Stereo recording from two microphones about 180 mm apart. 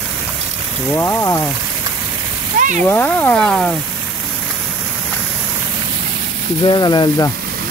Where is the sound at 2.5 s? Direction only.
45° right (ahead or behind).